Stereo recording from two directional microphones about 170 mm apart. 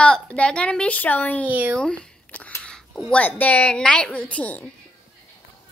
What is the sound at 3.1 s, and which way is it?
A woman's voice, 10° left (ahead or behind).